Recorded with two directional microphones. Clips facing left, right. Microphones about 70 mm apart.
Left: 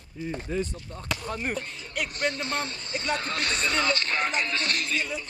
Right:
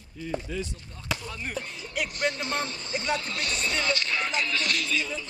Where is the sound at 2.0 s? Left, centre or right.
Centre.